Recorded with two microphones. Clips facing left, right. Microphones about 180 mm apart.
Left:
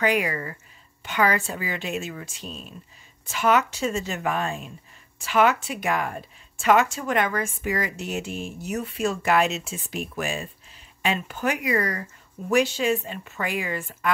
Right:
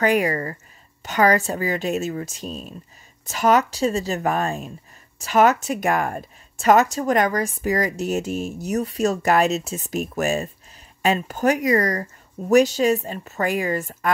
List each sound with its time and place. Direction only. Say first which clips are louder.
0.0 s a woman's voice: right 4 dB; 45° right (ahead or behind)